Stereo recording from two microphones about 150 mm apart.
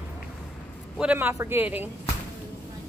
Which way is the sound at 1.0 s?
10° right (ahead or behind).